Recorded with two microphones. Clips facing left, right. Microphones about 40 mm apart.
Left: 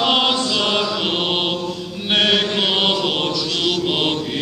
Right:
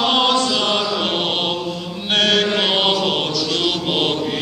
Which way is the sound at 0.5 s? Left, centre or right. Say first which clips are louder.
Even; centre.